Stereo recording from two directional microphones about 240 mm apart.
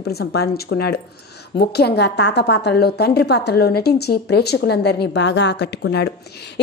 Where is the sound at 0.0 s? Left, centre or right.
Left.